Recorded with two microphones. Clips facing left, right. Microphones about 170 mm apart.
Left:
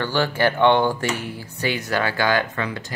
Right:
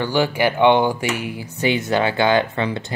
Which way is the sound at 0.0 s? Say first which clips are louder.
Right 2 dB; 15° right (ahead or behind).